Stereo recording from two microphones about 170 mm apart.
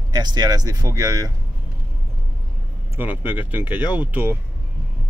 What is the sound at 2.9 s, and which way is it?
Speech, 10° right (ahead or behind).